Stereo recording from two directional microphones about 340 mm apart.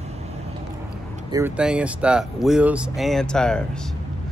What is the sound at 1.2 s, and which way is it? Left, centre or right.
Speech, centre.